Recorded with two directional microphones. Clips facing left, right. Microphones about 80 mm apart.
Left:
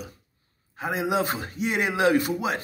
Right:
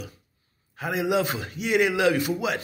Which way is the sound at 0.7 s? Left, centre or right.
Left.